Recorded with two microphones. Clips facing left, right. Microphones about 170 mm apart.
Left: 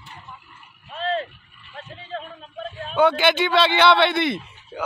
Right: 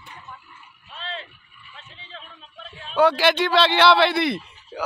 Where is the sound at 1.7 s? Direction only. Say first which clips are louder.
Left 11 dB; 45° left (ahead or behind).